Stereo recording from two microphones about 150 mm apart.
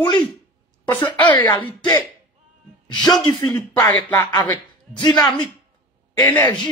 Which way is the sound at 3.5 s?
30° left (ahead or behind).